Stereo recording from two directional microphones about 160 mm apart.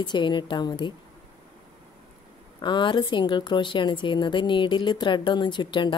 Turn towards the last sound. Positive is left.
turn(degrees=30)  # may be behind; listen again after turning